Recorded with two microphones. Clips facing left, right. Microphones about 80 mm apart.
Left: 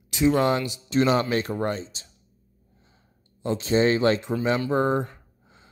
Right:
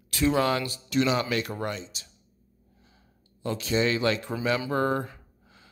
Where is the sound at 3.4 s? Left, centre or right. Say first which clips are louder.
Left 5 dB; left.